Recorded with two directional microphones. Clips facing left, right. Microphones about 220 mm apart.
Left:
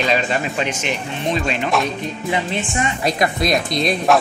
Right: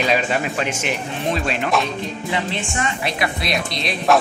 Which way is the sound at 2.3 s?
20° left (ahead or behind).